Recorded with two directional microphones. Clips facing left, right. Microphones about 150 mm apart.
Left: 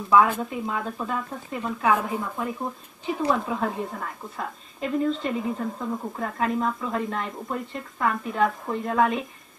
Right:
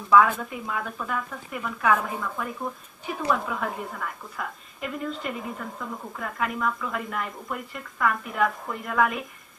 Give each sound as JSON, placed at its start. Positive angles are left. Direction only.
{"t": 0.1, "sound": "speech", "side_deg": 25}